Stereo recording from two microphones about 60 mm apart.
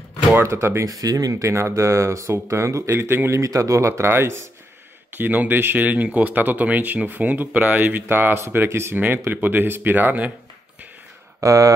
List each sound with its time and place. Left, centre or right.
0.5 s speech: right
0.8 s speech: right
3.3 s speech: right
5.1 s speech: right
8.9 s speech: right
11.4 s speech: right